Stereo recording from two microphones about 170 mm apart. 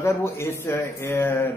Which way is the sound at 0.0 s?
15° left (ahead or behind).